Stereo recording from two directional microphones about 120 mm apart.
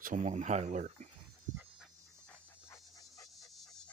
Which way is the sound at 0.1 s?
75° right (ahead or behind).